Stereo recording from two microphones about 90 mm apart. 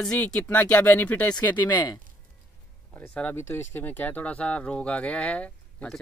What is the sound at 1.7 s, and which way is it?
Speech, 50° left (ahead or behind).